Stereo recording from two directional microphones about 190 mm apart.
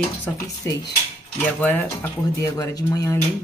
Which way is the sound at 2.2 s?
20° left (ahead or behind).